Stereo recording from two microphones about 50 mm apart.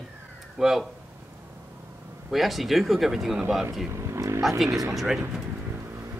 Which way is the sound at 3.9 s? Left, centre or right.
Right.